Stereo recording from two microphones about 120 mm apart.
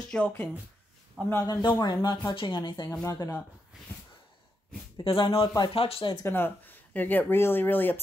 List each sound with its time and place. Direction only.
0.1 s speech: 15° left (ahead or behind)
1.3 s speech: 30° left (ahead or behind)
3.1 s speech: 25° left (ahead or behind)
4.9 s speech: 45° left (ahead or behind)
6.2 s speech: 20° left (ahead or behind)